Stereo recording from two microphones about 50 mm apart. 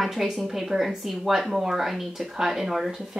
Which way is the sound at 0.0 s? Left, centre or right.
Centre.